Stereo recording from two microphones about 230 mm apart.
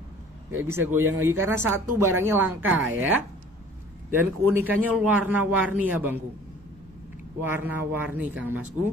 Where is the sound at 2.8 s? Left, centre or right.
Right.